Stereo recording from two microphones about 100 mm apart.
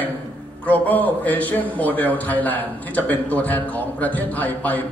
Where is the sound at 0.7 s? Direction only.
15° left (ahead or behind).